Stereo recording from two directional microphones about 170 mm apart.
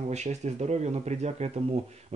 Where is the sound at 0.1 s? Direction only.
40° right (ahead or behind).